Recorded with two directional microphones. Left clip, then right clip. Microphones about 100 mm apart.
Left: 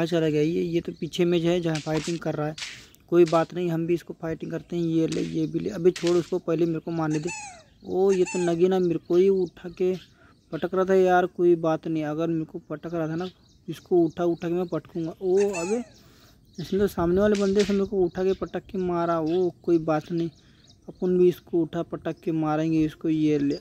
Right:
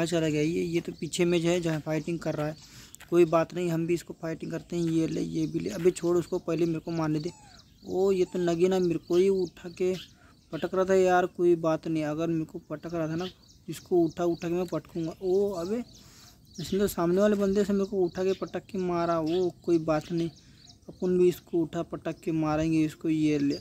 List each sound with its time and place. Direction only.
0.0 s speech: 35° left (ahead or behind)